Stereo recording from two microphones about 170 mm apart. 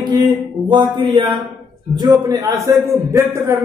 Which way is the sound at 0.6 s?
25° right (ahead or behind).